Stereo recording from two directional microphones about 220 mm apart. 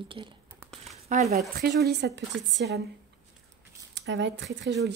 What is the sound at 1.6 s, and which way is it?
Speech, 50° right (ahead or behind).